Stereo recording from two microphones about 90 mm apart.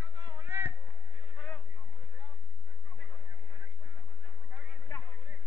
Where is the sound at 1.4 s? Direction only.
15° left (ahead or behind).